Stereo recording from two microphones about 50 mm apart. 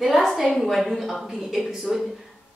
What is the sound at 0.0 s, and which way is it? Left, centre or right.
A woman's voice, centre.